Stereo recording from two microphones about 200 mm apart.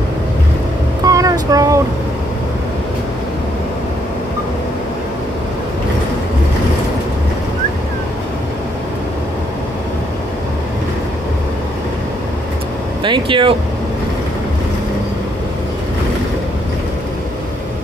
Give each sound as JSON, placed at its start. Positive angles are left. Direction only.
{"t": 1.0, "sound": "vehicle", "side_deg": -15}
{"t": 13.0, "sound": "speech", "side_deg": -25}